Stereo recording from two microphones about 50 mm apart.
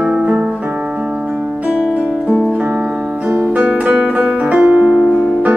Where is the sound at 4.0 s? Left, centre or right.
Centre.